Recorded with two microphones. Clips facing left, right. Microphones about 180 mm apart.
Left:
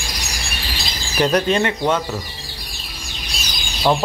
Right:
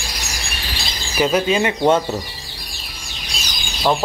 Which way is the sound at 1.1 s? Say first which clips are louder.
Even; 5° right (ahead or behind).